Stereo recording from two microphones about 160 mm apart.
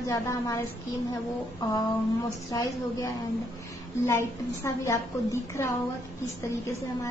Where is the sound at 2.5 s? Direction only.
20° left (ahead or behind).